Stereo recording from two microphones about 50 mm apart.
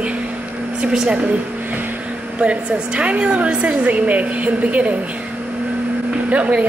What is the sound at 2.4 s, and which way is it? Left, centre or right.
Speech, right.